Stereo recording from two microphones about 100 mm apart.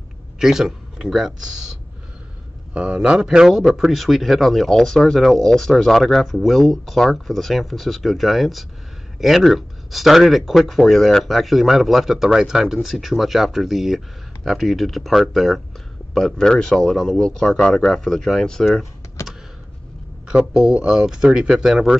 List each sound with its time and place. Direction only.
0.4 s a man's voice: 5° right (ahead or behind)
2.7 s speech: 10° right (ahead or behind)
19.2 s computer keyboard: 30° left (ahead or behind)
20.2 s speech: 5° right (ahead or behind)